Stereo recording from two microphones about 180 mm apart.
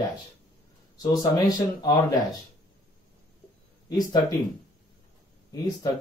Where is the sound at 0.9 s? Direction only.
20° left (ahead or behind).